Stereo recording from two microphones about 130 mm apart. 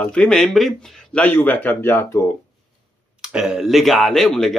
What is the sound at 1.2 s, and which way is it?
Speech, 15° left (ahead or behind).